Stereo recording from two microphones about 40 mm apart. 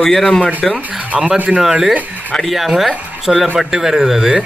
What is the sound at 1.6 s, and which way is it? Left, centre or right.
A man's voice, centre.